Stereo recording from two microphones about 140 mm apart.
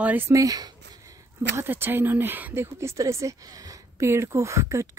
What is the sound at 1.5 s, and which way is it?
Speech, 15° right (ahead or behind).